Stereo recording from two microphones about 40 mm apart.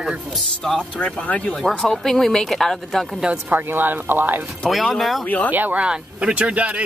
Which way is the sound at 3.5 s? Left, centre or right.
Right.